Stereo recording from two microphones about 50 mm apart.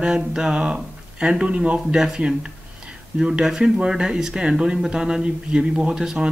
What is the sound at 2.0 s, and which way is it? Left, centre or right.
Speech, centre.